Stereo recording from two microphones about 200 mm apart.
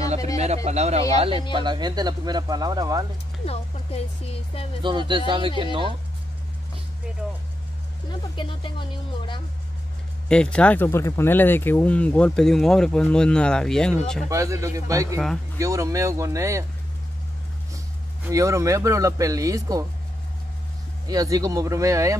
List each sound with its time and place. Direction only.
0.7 s speech: 35° right (ahead or behind)
3.4 s speech: 30° left (ahead or behind)
4.8 s speech: 25° right (ahead or behind)
8.1 s speech: 25° left (ahead or behind)
10.2 s speech: 5° left (ahead or behind)
14.3 s speech: 15° right (ahead or behind)
18.2 s speech: 15° right (ahead or behind)
21.1 s speech: 20° right (ahead or behind)